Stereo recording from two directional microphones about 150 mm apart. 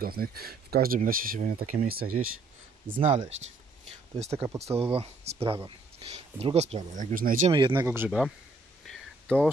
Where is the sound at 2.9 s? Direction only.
40° right (ahead or behind); by 7.4 s 65° right (ahead or behind).